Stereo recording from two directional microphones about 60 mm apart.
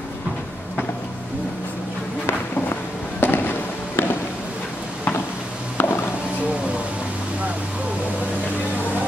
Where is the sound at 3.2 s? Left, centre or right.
Left.